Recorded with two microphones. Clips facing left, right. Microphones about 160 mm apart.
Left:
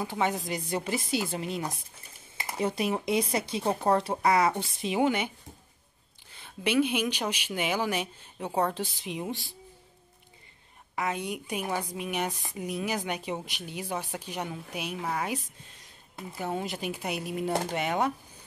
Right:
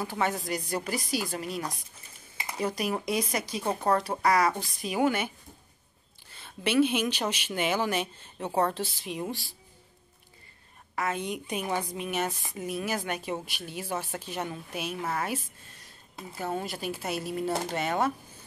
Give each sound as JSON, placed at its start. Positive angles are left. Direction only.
{"t": 0.0, "sound": "a woman's voice", "side_deg": 15}
{"t": 6.3, "sound": "a woman's voice", "side_deg": 15}
{"t": 11.0, "sound": "a woman's voice", "side_deg": 15}
{"t": 16.3, "sound": "a woman's voice", "side_deg": 15}